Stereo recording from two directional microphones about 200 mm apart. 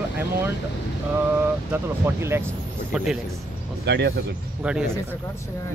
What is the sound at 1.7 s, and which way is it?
Speech, 10° right (ahead or behind).